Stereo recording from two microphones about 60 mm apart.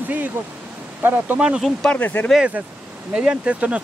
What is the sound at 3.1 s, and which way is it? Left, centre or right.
Speech, centre.